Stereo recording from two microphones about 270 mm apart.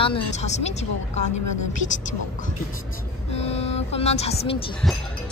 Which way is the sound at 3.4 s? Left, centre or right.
Left.